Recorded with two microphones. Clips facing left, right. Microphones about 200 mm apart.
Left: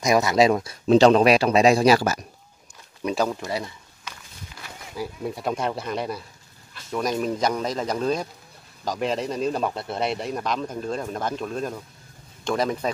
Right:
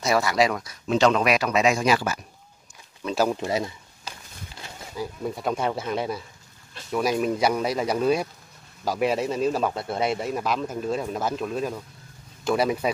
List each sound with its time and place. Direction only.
0.0 s speech: 20° left (ahead or behind); by 2.1 s 40° left (ahead or behind)
3.3 s speech: 20° right (ahead or behind)
4.1 s walk: 35° right (ahead or behind)
4.9 s a man's voice: 5° left (ahead or behind)